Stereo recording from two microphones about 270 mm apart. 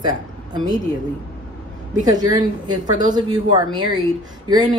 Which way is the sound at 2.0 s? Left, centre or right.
Centre.